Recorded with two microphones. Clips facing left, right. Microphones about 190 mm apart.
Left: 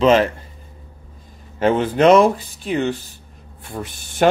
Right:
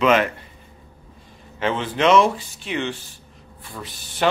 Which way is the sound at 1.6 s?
45° left (ahead or behind).